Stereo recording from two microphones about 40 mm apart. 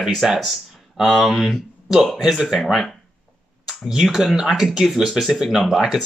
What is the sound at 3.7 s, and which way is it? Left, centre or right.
Speech, centre.